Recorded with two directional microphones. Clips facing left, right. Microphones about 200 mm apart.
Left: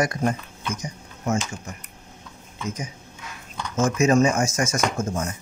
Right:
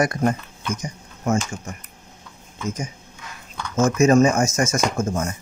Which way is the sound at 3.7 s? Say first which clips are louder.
Right 3 dB; 45° right (ahead or behind).